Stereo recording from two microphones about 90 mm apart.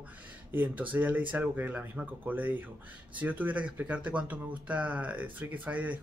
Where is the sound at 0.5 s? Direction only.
20° right (ahead or behind).